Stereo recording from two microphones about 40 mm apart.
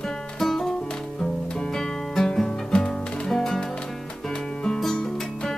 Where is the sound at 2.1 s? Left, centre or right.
Centre.